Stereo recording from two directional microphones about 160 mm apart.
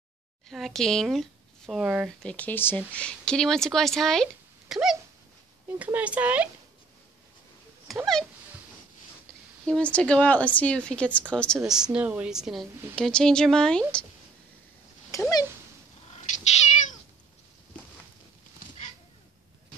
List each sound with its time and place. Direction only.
0.5 s speech: centre (ahead or behind)
2.2 s speech: 10° left (ahead or behind); by 6.5 s 10° right (ahead or behind)
7.9 s speech: centre (ahead or behind)
9.7 s speech: 5° left (ahead or behind)
15.0 s speech: 20° left (ahead or behind)
18.6 s a sound: 65° left (ahead or behind)